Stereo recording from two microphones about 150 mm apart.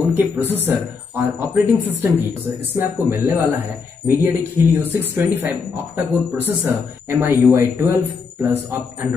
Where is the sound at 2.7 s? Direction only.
15° right (ahead or behind).